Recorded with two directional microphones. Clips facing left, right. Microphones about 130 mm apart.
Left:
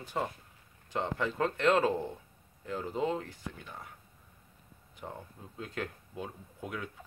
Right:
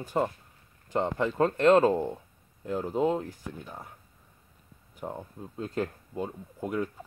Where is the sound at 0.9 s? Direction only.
15° right (ahead or behind).